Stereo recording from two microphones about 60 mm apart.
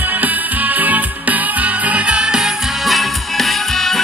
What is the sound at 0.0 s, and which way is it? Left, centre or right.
Music, right.